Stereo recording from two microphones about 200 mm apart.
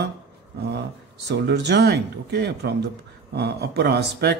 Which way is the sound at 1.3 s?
55° right (ahead or behind).